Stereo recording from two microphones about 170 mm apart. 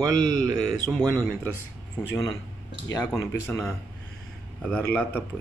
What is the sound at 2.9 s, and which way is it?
Speech, 20° left (ahead or behind).